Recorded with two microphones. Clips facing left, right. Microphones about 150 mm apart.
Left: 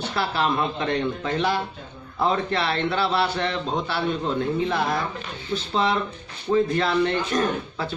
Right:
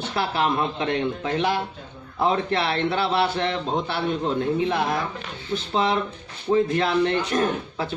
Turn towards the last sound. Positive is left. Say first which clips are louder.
# right 1 dB
turn(degrees=-20)  # may be behind; listen again after turning